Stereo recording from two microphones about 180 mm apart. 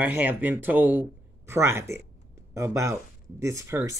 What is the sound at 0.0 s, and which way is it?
Speech, 10° right (ahead or behind).